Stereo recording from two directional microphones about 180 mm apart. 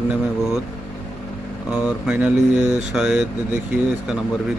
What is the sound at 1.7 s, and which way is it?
Speech, 5° right (ahead or behind).